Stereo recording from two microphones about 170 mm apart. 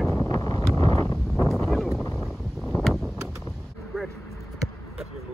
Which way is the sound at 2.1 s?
Centre (ahead or behind).